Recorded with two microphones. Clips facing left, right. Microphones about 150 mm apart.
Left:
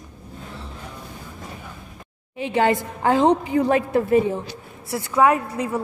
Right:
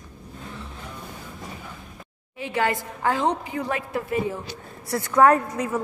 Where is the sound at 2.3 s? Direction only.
25° left (ahead or behind).